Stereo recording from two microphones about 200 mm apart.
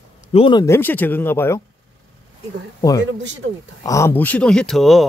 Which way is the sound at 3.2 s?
65° right (ahead or behind).